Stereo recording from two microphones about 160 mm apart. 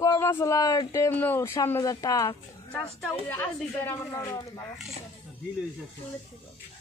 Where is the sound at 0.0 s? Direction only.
20° left (ahead or behind).